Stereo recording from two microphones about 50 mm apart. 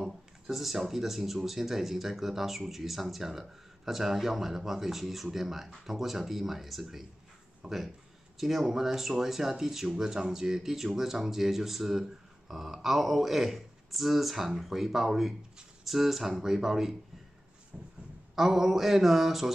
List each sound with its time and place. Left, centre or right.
0.0 s speech: centre
17.7 s a sound: centre
18.3 s speech: centre